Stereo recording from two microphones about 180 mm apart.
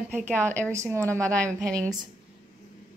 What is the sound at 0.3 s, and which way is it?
Speech, 10° left (ahead or behind).